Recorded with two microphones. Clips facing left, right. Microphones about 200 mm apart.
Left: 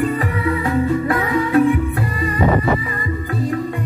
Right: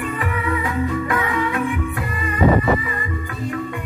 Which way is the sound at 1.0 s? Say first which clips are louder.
Left 3 dB; 35° left (ahead or behind).